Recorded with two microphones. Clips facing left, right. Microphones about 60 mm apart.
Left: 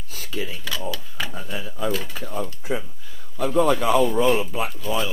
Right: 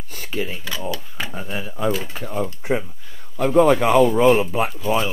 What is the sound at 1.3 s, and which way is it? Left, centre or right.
Speech, right.